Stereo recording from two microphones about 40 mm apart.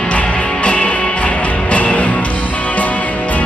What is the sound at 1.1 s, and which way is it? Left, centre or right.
Music, left.